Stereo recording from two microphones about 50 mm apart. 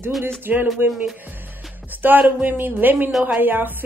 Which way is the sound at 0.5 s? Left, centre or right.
Right.